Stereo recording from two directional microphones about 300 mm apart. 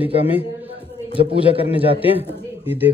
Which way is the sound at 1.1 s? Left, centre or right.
Centre.